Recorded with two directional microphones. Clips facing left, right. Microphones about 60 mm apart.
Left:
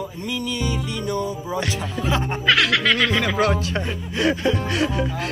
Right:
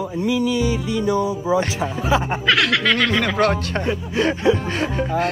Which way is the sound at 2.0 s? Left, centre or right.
Centre.